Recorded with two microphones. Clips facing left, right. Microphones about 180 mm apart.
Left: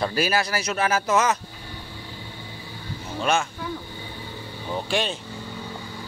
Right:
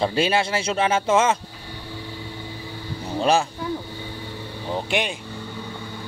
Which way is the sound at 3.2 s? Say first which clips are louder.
Right 4 dB; 35° right (ahead or behind).